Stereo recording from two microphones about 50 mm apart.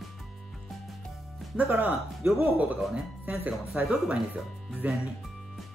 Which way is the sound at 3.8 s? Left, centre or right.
Right.